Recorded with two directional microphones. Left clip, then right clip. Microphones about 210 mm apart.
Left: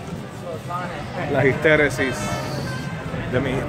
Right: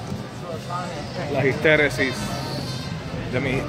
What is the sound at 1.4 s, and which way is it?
Speech, 5° left (ahead or behind).